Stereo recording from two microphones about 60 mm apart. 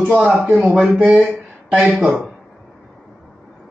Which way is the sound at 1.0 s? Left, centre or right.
Centre.